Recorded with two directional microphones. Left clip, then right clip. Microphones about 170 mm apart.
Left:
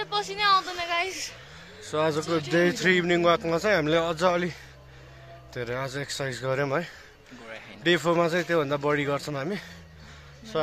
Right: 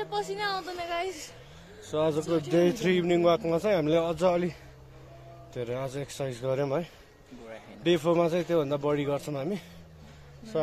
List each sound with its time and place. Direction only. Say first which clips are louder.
0.0 s a woman's voice: left 5 dB; 30° right (ahead or behind)
1.8 s a man's voice: left 2 dB; 5° left (ahead or behind)